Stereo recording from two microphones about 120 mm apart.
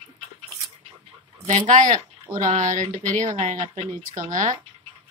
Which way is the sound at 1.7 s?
90° right.